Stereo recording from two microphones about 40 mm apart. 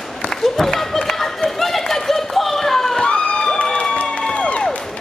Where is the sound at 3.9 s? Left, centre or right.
Left.